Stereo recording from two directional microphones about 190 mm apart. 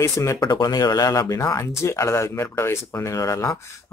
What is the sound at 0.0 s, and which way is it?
Speech, 15° left (ahead or behind).